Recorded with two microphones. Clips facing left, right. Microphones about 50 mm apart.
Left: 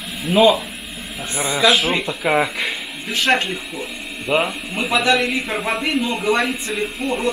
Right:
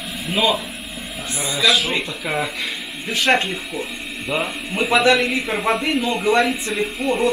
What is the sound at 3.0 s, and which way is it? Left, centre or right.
Speech, centre.